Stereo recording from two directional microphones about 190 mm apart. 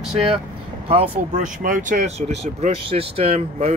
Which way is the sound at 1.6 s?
45° right (ahead or behind).